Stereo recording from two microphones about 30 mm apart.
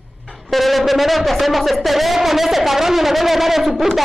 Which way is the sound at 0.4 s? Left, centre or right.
Centre.